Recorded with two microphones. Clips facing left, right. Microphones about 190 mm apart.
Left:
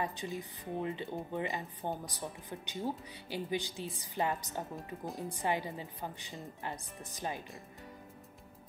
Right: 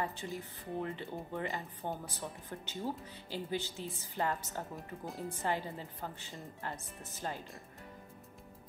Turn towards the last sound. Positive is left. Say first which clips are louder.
# left 1 dB
turn(degrees=15)  # may be behind; listen again after turning